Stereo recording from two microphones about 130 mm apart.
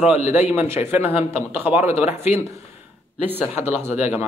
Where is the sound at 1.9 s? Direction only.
55° left (ahead or behind).